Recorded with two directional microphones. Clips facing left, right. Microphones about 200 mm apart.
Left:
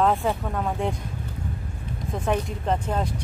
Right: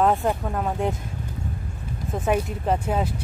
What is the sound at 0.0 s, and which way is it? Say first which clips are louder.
Speech: right 1 dB; 5° right (ahead or behind).